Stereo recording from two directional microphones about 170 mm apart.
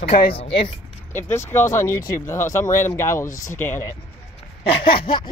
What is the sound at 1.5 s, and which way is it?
Speech, 15° left (ahead or behind).